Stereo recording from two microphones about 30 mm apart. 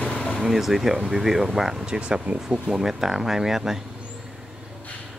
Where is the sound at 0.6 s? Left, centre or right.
Centre.